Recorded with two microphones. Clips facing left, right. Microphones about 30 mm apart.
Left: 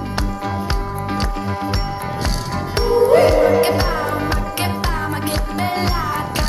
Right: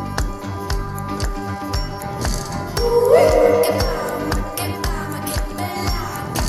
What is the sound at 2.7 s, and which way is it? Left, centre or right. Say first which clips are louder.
Music: even; left.